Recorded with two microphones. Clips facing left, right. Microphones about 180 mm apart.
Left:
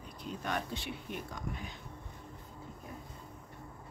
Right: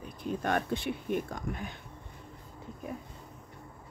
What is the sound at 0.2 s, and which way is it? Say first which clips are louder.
Speech: right 7 dB; 50° right (ahead or behind).